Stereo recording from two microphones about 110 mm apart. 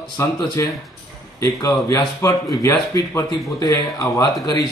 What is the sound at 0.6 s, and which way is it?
A man's voice, 25° left (ahead or behind).